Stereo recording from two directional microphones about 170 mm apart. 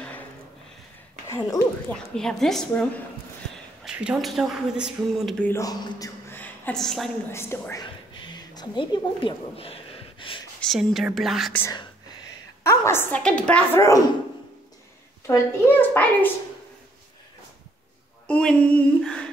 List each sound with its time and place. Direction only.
1.3 s a woman's voice: 15° left (ahead or behind)
2.1 s a woman's voice: centre (ahead or behind)
5.4 s a woman's voice: 15° left (ahead or behind)
7.2 s a woman's voice: 15° left (ahead or behind)
7.8 s a sound: 25° left (ahead or behind)
10.6 s a woman's voice: centre (ahead or behind)
12.6 s a woman's voice: 15° left (ahead or behind)
15.2 s a woman's voice: 15° left (ahead or behind)
18.2 s a sound: 5° left (ahead or behind)